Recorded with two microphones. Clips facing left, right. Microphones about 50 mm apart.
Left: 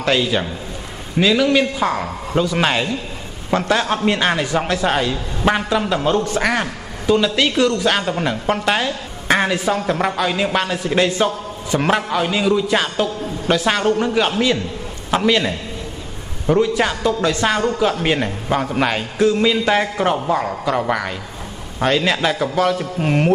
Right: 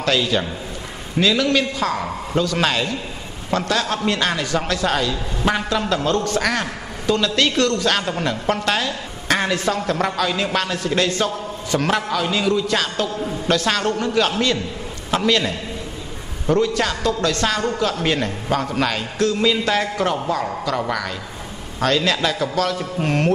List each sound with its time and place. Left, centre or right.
0.0 s a man's voice: centre